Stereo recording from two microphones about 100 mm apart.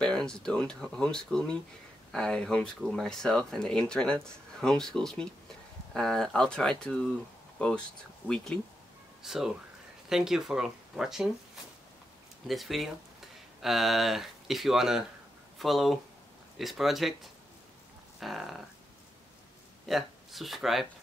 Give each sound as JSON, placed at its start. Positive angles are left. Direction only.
{"t": 0.0, "sound": "speech", "side_deg": 5}
{"t": 9.2, "sound": "speech", "side_deg": -5}
{"t": 12.4, "sound": "speech", "side_deg": 0}
{"t": 19.9, "sound": "speech", "side_deg": 0}